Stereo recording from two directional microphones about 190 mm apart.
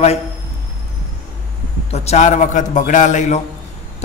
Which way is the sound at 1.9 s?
35° left (ahead or behind).